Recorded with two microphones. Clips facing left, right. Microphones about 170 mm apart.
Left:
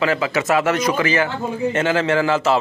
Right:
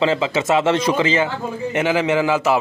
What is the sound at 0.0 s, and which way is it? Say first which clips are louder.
A man's voice: right 1 dB; 25° right (ahead or behind).